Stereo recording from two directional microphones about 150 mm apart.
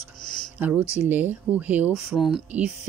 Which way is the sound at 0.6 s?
10° right (ahead or behind).